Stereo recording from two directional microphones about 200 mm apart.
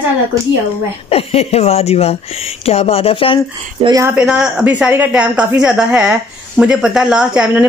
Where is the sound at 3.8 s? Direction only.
15° right (ahead or behind).